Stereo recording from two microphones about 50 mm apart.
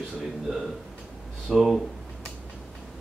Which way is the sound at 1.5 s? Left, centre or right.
Centre.